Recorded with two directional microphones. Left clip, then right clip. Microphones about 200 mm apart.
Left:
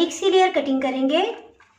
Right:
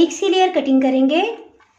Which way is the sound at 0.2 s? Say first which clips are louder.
Right 2 dB; 45° right (ahead or behind).